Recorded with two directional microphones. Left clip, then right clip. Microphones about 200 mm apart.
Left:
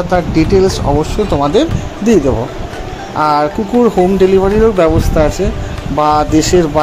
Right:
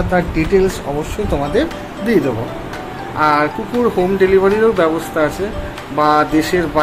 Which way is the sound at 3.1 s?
30° left (ahead or behind).